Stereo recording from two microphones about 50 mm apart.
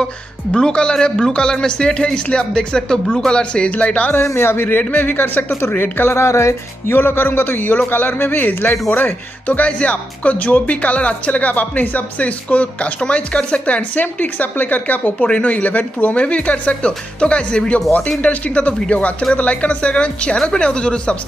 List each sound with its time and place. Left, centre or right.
0.6 s a man's voice: centre
3.7 s speech: left
4.3 s a man's voice: left
6.1 s speech: left
6.9 s a man's voice: left; by 21.2 s centre